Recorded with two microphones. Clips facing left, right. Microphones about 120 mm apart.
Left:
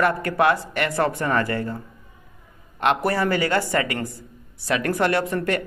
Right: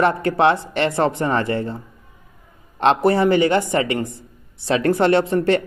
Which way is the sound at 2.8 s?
25° right (ahead or behind).